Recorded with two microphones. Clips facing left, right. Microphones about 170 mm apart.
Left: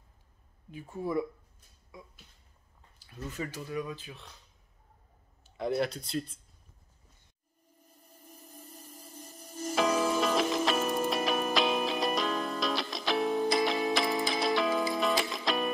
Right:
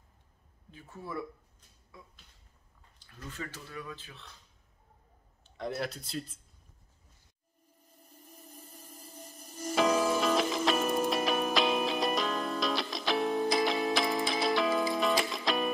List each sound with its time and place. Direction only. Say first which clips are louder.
0.7 s speech: left 8 dB; 15° left (ahead or behind)
3.3 s speech: left 5 dB; 10° left (ahead or behind)
5.4 s speech: left 5 dB; centre (ahead or behind)
9.8 s music: right 1 dB; centre (ahead or behind)